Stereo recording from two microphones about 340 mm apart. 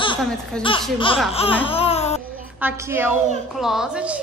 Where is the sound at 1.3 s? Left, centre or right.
Centre.